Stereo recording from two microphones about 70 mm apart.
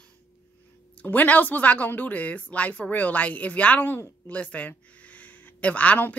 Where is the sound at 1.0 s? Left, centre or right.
Left.